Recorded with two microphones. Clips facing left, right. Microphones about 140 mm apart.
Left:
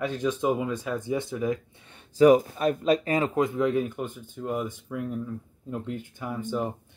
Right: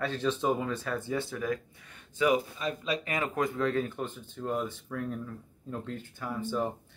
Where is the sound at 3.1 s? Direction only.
25° left (ahead or behind).